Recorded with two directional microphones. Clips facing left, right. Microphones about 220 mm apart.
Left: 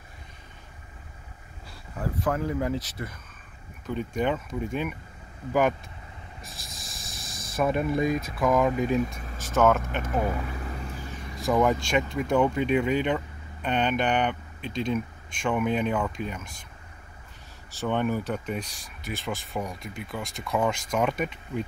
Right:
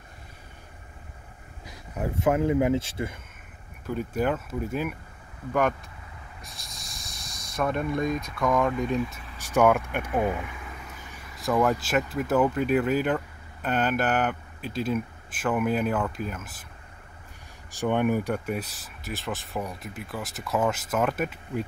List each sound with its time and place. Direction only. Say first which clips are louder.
1.7 s speech: right 2 dB; 20° right (ahead or behind)
3.8 s speech: right 1 dB; 5° right (ahead or behind)
6.4 s snake: left 1 dB; centre (ahead or behind)
8.4 s speech: left 1 dB; 5° left (ahead or behind)
9.4 s speech: right 1 dB; 15° right (ahead or behind)
10.3 s vehicle: left 2 dB; 40° left (ahead or behind)
11.3 s speech: left 1 dB; centre (ahead or behind)
17.6 s speech: right 2 dB; 15° right (ahead or behind)